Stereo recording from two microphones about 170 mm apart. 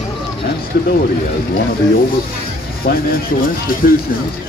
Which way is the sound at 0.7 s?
70° left (ahead or behind).